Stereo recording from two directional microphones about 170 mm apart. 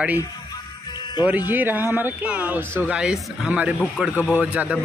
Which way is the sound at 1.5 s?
10° right (ahead or behind).